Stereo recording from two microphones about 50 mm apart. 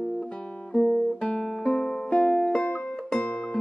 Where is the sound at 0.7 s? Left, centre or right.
Left.